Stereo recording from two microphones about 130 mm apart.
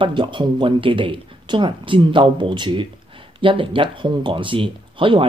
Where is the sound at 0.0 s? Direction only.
40° right (ahead or behind).